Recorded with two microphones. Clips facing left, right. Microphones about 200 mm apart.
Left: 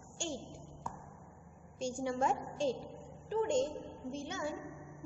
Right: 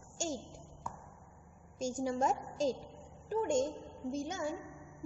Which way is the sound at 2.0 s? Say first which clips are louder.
Even; 40° right (ahead or behind).